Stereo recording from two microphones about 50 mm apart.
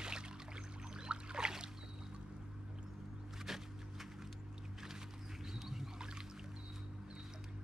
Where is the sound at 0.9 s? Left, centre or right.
Centre.